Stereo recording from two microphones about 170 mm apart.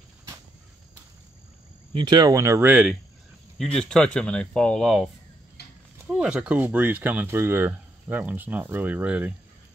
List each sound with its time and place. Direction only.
2.0 s speech: 25° right (ahead or behind); by 3.0 s 5° right (ahead or behind)
3.5 s speech: 5° left (ahead or behind)
5.6 s a sound: 70° left (ahead or behind)
6.0 s speech: 5° right (ahead or behind)